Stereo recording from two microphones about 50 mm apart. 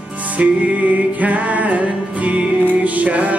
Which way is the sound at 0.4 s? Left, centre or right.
Right.